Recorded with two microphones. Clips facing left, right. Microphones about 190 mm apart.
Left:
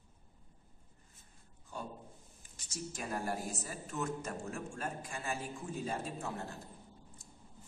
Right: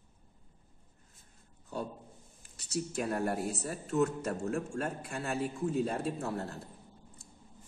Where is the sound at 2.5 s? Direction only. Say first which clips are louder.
Right 9 dB; 65° right (ahead or behind).